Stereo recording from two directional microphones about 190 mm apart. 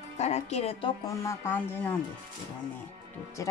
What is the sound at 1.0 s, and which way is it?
Speech, 15° left (ahead or behind).